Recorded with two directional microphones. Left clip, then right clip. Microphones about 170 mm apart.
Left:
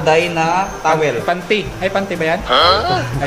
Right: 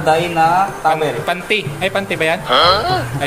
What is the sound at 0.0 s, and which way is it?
Speech, 15° left (ahead or behind).